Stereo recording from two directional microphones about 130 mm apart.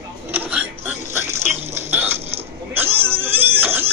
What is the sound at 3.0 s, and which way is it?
Music, 20° right (ahead or behind).